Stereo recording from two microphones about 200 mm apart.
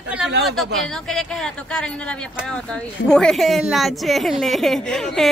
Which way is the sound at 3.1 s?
5° left (ahead or behind).